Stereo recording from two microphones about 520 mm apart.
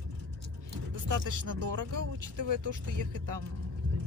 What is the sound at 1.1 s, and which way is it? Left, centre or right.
Speech, right.